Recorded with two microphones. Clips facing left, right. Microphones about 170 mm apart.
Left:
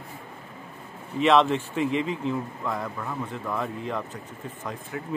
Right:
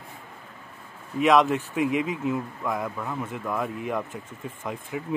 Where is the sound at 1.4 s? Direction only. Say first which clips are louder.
Right 1 dB; 10° right (ahead or behind).